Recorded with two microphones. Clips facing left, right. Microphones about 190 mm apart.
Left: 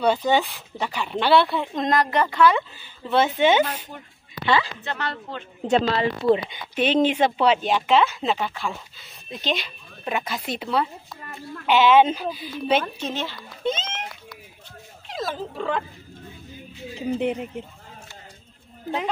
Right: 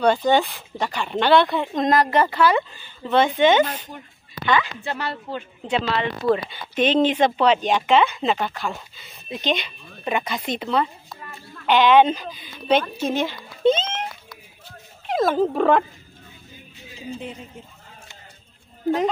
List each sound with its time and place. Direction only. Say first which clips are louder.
0.0 s speech: right 2 dB; 5° left (ahead or behind)
2.7 s speech: right 2 dB; 10° left (ahead or behind)
4.8 s speech: right 2 dB; 10° right (ahead or behind)
5.7 s speech: left 3 dB; 40° left (ahead or behind); by 12.8 s 5° left (ahead or behind)
12.9 s speech: right 6 dB; 10° right (ahead or behind)
13.7 s speech: right 8 dB; 30° right (ahead or behind)
15.0 s speech: right 10 dB; 55° right (ahead or behind)
17.2 s speech: left 10 dB; 65° left (ahead or behind)